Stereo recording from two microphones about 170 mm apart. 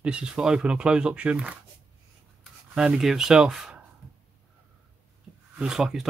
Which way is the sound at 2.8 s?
5° right (ahead or behind).